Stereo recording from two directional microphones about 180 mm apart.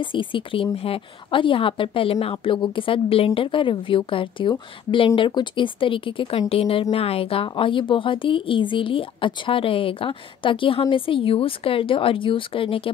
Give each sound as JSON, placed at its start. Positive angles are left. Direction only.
{"t": 0.0, "sound": "a woman's voice", "side_deg": 30}